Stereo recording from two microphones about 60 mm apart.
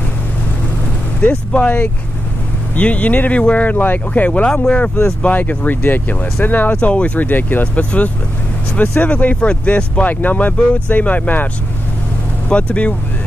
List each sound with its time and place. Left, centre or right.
1.2 s speech: centre
9.0 s speech: left
12.4 s speech: centre